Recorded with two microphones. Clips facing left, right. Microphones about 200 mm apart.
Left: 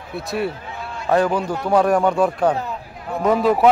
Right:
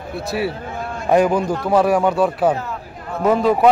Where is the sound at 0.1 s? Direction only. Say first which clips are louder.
Right 1 dB; centre (ahead or behind).